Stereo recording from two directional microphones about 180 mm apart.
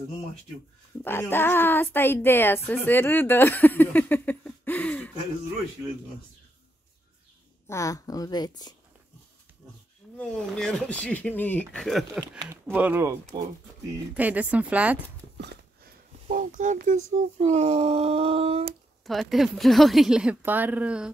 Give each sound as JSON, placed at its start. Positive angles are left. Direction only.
{"t": 1.0, "sound": "speech", "side_deg": 10}
{"t": 7.6, "sound": "speech", "side_deg": 15}
{"t": 10.1, "sound": "speech", "side_deg": 5}
{"t": 12.6, "sound": "speech", "side_deg": -10}
{"t": 15.3, "sound": "a sound", "side_deg": -70}
{"t": 16.3, "sound": "speech", "side_deg": -45}
{"t": 19.0, "sound": "speech", "side_deg": 0}